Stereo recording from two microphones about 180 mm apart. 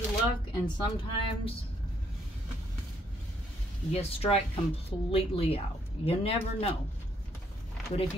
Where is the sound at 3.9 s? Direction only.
35° left (ahead or behind).